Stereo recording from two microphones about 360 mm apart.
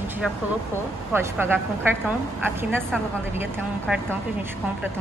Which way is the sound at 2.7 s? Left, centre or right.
Centre.